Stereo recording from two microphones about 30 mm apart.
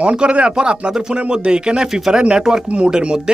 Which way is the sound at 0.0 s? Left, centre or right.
Right.